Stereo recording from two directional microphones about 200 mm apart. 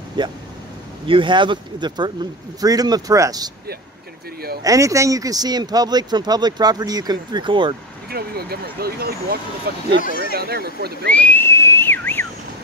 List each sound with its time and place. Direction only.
0.2 s speech: 25° right (ahead or behind)
4.6 s speech: 15° right (ahead or behind)
8.1 s speech: 50° right (ahead or behind)
10.0 s speech: 45° left (ahead or behind)
10.3 s speech: 50° right (ahead or behind)
11.1 s whistling: 5° left (ahead or behind)